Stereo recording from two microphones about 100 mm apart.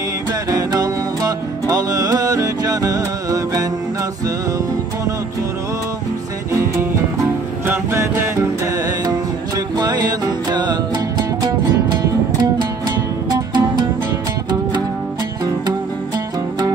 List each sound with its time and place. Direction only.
0.3 s music: 35° right (ahead or behind)
7.6 s music: 25° right (ahead or behind)
9.8 s music: 40° right (ahead or behind)